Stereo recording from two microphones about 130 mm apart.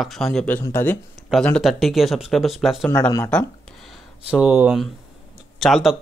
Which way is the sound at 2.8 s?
15° left (ahead or behind).